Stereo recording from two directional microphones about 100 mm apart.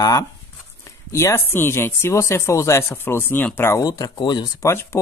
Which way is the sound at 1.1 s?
25° left (ahead or behind).